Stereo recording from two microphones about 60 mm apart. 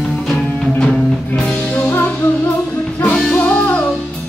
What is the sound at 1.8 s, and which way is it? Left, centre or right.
Music, left.